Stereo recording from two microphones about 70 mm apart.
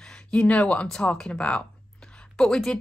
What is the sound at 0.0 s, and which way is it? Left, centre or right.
Speech, centre.